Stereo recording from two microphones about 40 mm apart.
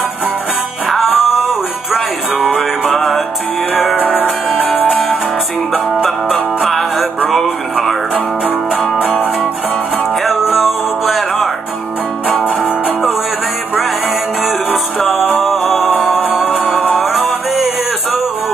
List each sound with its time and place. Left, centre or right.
0.8 s music: centre
4.0 s music: left
10.2 s music: centre
12.4 s music: right
15.0 s music: centre